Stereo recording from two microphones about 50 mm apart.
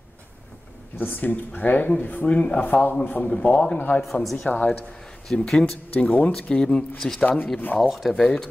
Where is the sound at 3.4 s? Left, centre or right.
Centre.